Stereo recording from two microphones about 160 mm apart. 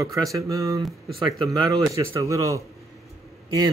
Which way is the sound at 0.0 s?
20° right (ahead or behind).